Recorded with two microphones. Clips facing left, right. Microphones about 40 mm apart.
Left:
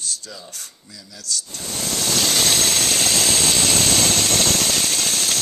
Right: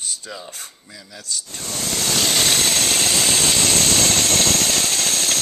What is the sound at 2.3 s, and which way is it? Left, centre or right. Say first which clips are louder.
Engine: right 1 dB; centre.